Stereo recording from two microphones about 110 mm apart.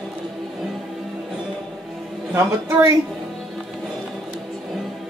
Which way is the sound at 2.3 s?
25° right (ahead or behind).